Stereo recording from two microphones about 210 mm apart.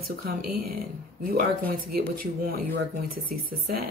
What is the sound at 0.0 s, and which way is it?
Speech, 45° right (ahead or behind).